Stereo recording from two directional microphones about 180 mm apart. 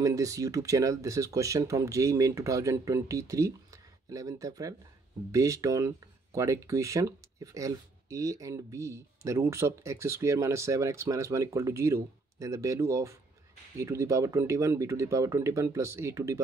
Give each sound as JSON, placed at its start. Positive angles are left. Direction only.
{"t": 0.0, "sound": "speech", "side_deg": -20}